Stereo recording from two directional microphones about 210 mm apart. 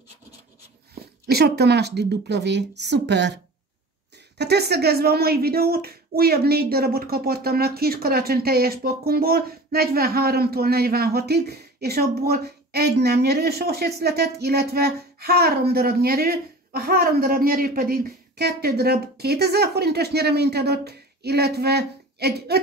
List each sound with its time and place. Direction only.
1.2 s speech: 50° right (ahead or behind)
4.4 s speech: 50° right (ahead or behind)